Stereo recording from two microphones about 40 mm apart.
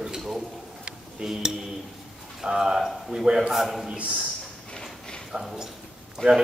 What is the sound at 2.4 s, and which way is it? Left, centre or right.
Speech, centre.